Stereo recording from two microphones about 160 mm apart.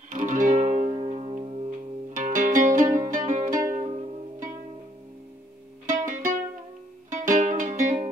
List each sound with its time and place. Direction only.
0.1 s music: 55° right (ahead or behind); by 1.7 s 35° right (ahead or behind)
2.1 s music: 55° right (ahead or behind)
5.9 s music: 55° right (ahead or behind)